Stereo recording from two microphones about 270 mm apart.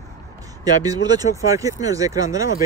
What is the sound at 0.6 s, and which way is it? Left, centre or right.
Speech, centre.